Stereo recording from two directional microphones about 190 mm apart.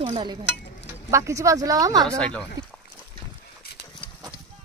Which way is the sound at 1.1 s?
15° right (ahead or behind).